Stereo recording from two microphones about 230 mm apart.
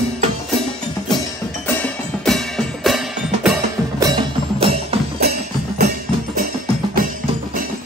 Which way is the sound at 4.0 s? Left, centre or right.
Centre.